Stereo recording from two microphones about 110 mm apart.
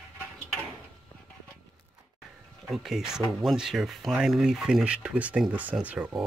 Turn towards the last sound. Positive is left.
turn(degrees=-15)  # may be behind; listen again after turning